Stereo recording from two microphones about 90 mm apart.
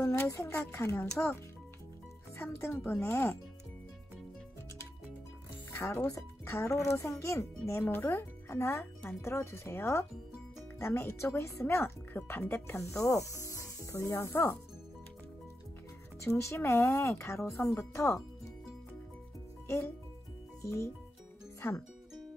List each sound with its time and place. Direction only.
0.0 s speech: 30° left (ahead or behind)
5.7 s speech: 30° left (ahead or behind)
16.2 s speech: 35° left (ahead or behind)
20.6 s speech: 30° left (ahead or behind)